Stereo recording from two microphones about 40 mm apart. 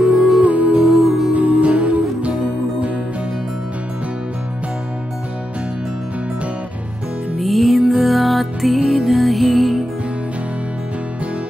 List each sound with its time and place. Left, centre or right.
0.1 s music: centre
0.4 s music: right
0.8 s music: centre
1.5 s music: right
7.3 s music: centre